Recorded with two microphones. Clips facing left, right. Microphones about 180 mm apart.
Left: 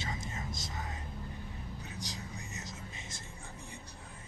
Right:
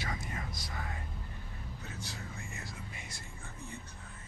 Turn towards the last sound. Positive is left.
turn(degrees=20)  # may be behind; listen again after turning